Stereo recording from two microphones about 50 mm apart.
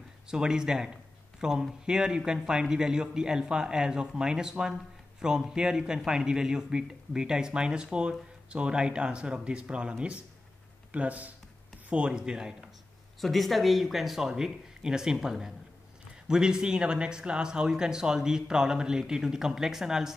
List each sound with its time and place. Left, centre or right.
0.3 s a man's voice: centre
13.2 s a man's voice: centre